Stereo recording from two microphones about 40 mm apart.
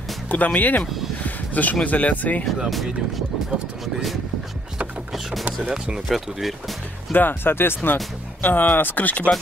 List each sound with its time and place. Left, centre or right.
0.3 s speech: left
1.2 s a sound: left
1.9 s speech: left
3.8 s speech: centre
5.7 s speech: centre
6.0 s speech: centre
7.1 s speech: left